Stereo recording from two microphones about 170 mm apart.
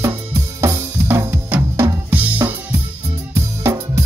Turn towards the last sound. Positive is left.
turn(degrees=-15)  # may be behind; listen again after turning